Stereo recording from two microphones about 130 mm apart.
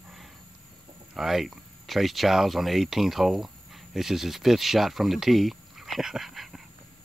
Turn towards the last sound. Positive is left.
turn(degrees=0)  # may be behind; listen again after turning